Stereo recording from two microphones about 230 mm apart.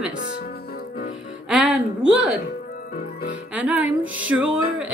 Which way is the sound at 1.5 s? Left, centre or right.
Centre.